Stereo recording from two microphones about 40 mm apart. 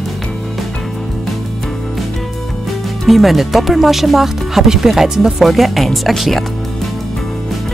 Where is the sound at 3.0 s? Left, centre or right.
Centre.